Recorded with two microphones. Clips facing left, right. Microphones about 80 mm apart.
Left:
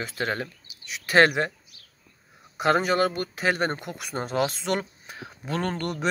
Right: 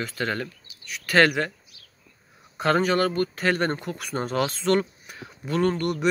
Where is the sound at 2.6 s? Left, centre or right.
Centre.